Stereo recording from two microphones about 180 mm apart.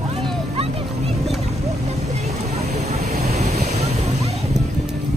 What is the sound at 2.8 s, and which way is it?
Vehicle, 35° right (ahead or behind).